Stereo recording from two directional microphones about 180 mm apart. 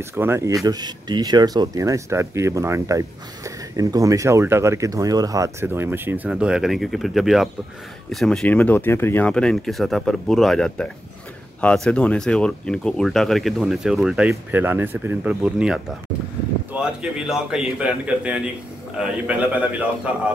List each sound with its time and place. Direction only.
0.0 s speech: 15° right (ahead or behind)